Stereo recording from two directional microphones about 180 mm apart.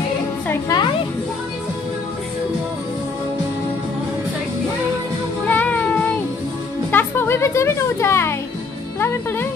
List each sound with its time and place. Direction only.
0.5 s music: 20° left (ahead or behind)
5.5 s child singing: 10° left (ahead or behind)
6.9 s music: 10° left (ahead or behind)